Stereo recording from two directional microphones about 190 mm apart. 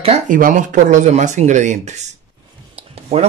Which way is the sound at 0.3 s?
45° right (ahead or behind).